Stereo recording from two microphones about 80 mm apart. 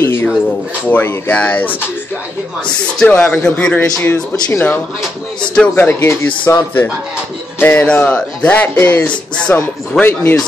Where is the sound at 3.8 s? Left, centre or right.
Left.